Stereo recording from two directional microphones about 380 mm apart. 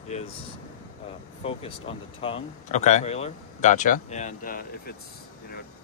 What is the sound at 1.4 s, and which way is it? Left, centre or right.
Speech, centre.